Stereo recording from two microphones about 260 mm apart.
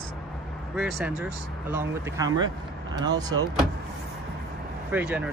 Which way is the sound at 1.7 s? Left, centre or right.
Centre.